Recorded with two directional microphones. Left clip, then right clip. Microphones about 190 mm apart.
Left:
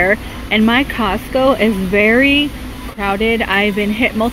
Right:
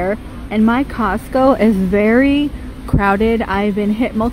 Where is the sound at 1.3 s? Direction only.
20° right (ahead or behind).